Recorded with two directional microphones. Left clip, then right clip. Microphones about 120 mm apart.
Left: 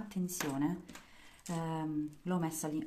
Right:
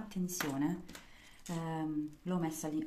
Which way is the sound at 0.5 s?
10° left (ahead or behind).